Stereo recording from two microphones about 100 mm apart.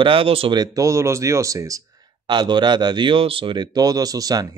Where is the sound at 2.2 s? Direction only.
45° right (ahead or behind).